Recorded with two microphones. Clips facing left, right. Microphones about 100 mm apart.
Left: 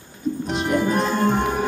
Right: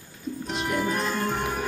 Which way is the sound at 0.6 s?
25° left (ahead or behind).